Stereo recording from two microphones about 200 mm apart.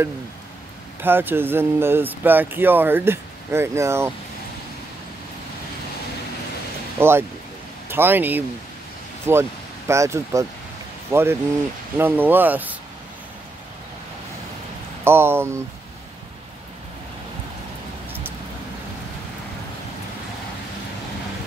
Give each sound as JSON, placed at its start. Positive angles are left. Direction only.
{"t": 1.0, "sound": "speech", "side_deg": -10}
{"t": 7.0, "sound": "speech", "side_deg": -10}
{"t": 15.0, "sound": "speech", "side_deg": -10}